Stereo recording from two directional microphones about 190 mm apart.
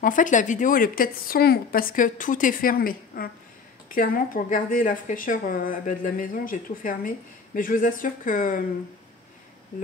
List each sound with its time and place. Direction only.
0.0 s speech: 45° left (ahead or behind)